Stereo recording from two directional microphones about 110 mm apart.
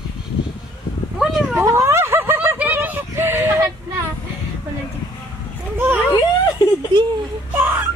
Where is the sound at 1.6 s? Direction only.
25° right (ahead or behind).